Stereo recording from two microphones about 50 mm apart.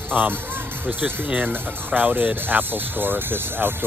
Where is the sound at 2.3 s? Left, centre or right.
Right.